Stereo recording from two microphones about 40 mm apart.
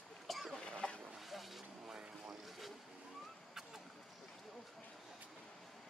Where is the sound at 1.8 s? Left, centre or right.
Centre.